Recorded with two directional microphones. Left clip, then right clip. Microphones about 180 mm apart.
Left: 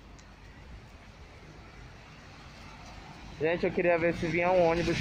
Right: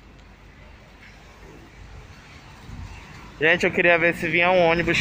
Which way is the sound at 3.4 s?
15° right (ahead or behind).